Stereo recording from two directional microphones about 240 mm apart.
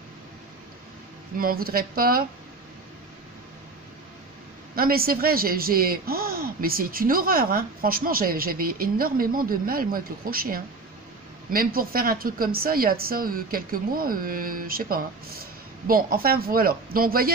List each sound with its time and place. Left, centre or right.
1.4 s speech: right
4.7 s speech: right